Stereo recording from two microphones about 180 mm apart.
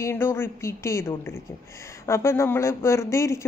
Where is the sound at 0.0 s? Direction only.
15° left (ahead or behind).